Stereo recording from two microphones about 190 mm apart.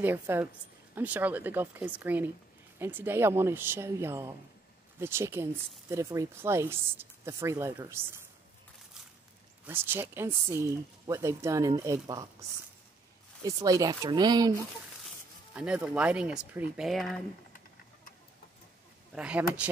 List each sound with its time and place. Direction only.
0.0 s speech: 10° right (ahead or behind)
9.7 s speech: 10° right (ahead or behind)
15.0 s speech: 5° right (ahead or behind)
19.1 s speech: 5° right (ahead or behind)